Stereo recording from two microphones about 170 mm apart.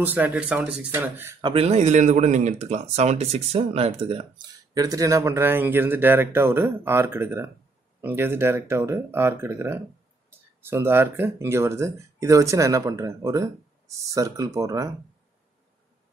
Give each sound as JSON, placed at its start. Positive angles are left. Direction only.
{"t": 0.0, "sound": "speech", "side_deg": -10}
{"t": 1.4, "sound": "speech", "side_deg": -35}
{"t": 4.7, "sound": "speech", "side_deg": -20}